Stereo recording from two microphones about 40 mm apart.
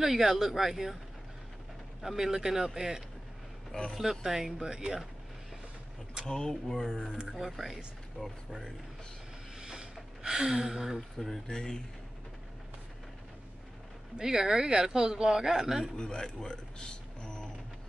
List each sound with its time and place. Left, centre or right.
0.0 s speech: centre
2.0 s speech: centre
6.2 s speech: centre
7.3 s speech: centre
9.6 s a sound: centre
11.0 s speech: centre
11.4 s speech: centre
14.1 s speech: centre
16.0 s speech: centre